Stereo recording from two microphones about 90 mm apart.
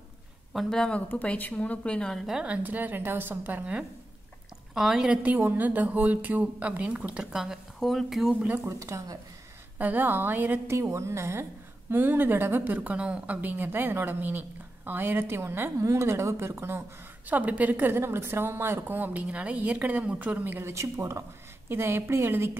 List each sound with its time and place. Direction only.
0.5 s a woman's voice: centre (ahead or behind)
2.2 s a woman's voice: 10° right (ahead or behind)
4.7 s a woman's voice: 5° right (ahead or behind)
5.2 s speech: 20° right (ahead or behind); by 8.4 s centre (ahead or behind)
8.4 s a woman's voice: 20° right (ahead or behind)
8.6 s speech: 35° right (ahead or behind)
9.8 s a woman's voice: 20° right (ahead or behind)
10.8 s a woman's voice: 30° right (ahead or behind)